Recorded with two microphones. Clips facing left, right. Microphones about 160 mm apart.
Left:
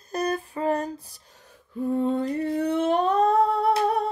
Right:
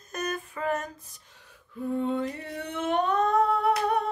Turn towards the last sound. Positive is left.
turn(degrees=35)  # may be behind; listen again after turning